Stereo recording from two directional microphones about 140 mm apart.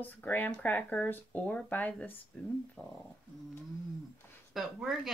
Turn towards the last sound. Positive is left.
turn(degrees=-5)  # may be behind; listen again after turning